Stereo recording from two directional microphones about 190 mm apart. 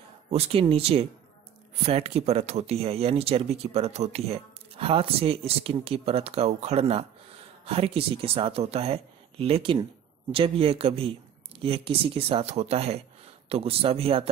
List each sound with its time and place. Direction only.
0.3 s speech: 30° right (ahead or behind)